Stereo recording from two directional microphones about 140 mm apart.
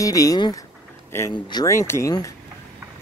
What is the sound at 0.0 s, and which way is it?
Speech, 25° left (ahead or behind).